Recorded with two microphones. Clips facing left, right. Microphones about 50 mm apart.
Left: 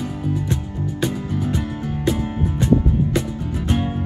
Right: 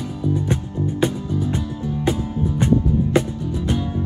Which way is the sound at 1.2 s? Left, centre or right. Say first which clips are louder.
Even; left.